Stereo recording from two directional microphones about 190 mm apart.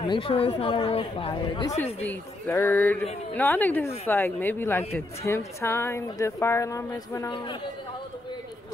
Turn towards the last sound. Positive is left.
turn(degrees=20)  # may be behind; listen again after turning